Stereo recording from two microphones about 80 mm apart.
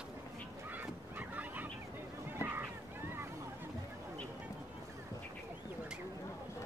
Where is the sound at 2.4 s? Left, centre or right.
Right.